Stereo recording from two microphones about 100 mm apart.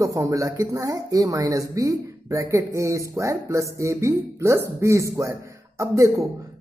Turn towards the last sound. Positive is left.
turn(degrees=-30)  # may be behind; listen again after turning